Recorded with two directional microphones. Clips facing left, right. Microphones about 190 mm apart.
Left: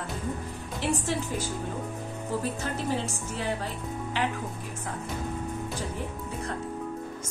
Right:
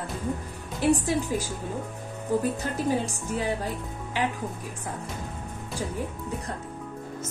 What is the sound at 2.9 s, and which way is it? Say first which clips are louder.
Speech: right 3 dB; 15° right (ahead or behind).